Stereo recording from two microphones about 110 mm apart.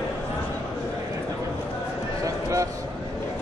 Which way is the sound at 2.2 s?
30° right (ahead or behind).